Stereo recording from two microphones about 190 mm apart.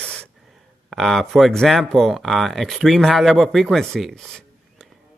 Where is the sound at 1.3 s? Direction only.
Centre (ahead or behind).